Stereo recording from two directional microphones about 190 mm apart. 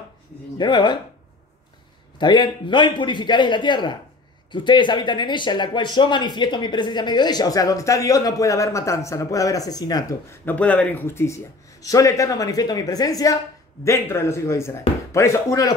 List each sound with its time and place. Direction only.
0.6 s speech: 25° left (ahead or behind)
2.1 s speech: 25° left (ahead or behind)